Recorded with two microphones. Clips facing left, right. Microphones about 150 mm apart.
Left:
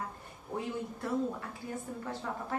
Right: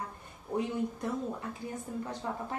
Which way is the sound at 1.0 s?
20° right (ahead or behind).